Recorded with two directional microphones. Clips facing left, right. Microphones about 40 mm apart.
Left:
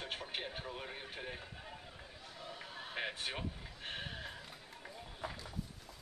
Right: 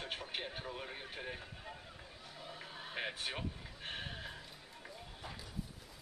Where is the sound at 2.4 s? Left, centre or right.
Centre.